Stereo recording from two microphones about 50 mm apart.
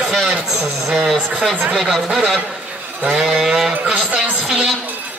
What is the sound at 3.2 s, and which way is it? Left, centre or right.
Sheep, centre.